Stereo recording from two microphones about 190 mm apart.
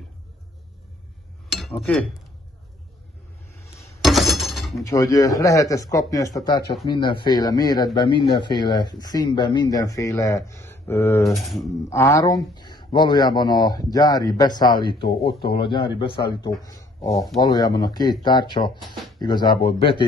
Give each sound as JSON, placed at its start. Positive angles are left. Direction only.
{"t": 1.5, "sound": "speech", "side_deg": 5}
{"t": 4.0, "sound": "a sound", "side_deg": 0}
{"t": 4.8, "sound": "a man's voice", "side_deg": 15}
{"t": 11.3, "sound": "speech", "side_deg": 0}
{"t": 11.9, "sound": "speech", "side_deg": 15}